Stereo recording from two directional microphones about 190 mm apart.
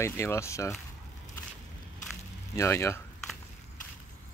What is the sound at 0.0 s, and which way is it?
Speech, 15° left (ahead or behind).